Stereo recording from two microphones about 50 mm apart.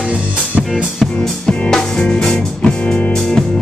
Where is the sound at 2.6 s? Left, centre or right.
Left.